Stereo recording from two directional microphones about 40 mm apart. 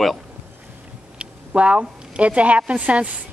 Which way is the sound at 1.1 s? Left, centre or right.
Right.